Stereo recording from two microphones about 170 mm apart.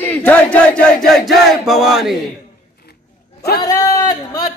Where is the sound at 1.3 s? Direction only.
Centre (ahead or behind).